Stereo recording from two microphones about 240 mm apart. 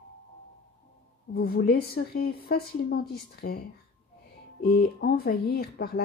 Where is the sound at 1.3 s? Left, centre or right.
Left.